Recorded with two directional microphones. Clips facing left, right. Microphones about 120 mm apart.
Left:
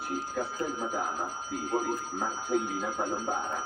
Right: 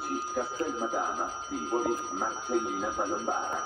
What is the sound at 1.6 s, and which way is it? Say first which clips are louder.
Speech: right 2 dB; centre (ahead or behind).